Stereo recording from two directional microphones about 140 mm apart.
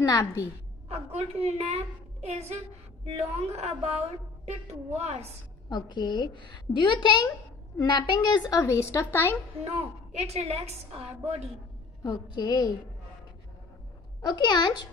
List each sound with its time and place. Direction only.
0.0 s a woman's voice: 25° left (ahead or behind)
0.8 s a woman's voice: 50° right (ahead or behind)
5.7 s a woman's voice: 30° left (ahead or behind)
9.7 s a woman's voice: 50° right (ahead or behind)
12.0 s a woman's voice: 25° left (ahead or behind)
14.2 s a woman's voice: 30° left (ahead or behind)